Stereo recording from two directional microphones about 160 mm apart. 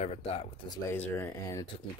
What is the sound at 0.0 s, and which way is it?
Speech, 40° left (ahead or behind).